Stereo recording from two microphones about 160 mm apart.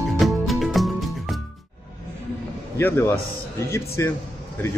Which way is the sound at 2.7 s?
15° left (ahead or behind).